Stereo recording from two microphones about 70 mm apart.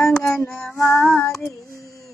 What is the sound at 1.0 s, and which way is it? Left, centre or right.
Child singing, left.